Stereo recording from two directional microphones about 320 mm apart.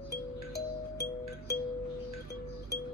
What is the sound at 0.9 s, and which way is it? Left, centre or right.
Music, left.